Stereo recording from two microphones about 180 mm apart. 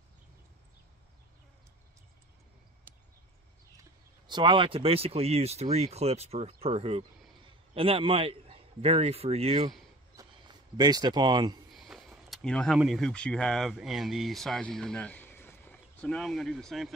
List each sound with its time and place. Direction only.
4.3 s a man's voice: 25° right (ahead or behind)
10.1 s a sound: 20° right (ahead or behind)
11.7 s speech: centre (ahead or behind)